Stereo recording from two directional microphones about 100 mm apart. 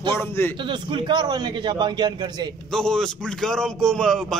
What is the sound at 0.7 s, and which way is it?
A man's voice, 50° right (ahead or behind).